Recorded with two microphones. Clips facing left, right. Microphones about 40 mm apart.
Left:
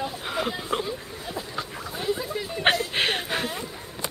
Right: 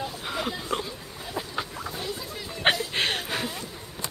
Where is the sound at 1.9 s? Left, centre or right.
Centre.